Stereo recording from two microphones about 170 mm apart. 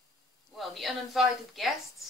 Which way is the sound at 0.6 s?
Centre (ahead or behind).